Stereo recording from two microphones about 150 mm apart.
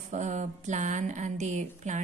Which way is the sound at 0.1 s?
55° right (ahead or behind).